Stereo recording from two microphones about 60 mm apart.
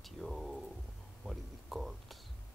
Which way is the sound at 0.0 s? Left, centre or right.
Centre.